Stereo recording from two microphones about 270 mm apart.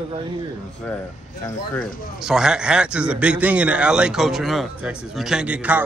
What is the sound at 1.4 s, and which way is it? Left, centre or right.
Speech, centre.